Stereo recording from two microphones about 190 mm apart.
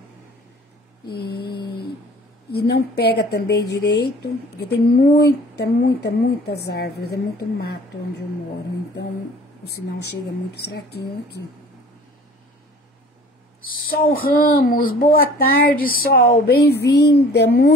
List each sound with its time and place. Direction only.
1.0 s mantra: 60° left (ahead or behind)
2.7 s speech: 60° left (ahead or behind)
10.5 s speech: 60° left (ahead or behind)
13.7 s speech: 50° left (ahead or behind)